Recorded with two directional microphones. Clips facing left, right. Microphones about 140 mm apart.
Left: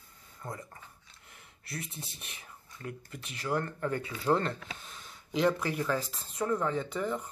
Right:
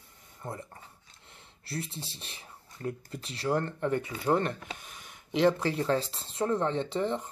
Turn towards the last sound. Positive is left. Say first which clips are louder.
# right 3 dB
turn(degrees=-25)  # may be behind; listen again after turning